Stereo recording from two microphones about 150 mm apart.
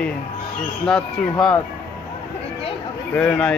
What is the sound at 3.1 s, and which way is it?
Speech, 5° left (ahead or behind).